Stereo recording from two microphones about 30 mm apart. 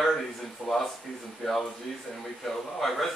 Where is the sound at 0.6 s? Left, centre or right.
Centre.